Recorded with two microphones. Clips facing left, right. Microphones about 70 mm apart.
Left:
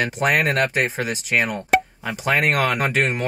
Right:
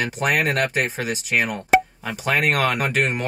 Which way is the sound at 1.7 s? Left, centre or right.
Centre.